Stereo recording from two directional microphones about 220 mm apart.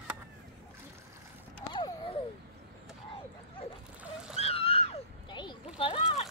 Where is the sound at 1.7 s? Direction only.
20° left (ahead or behind).